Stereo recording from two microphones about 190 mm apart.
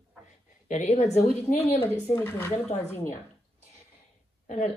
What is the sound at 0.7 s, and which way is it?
Speech, 35° left (ahead or behind).